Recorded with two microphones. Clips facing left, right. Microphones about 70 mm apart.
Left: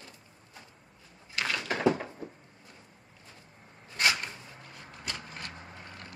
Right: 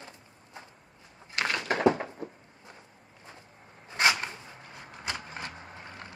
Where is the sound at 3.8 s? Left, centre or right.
Centre.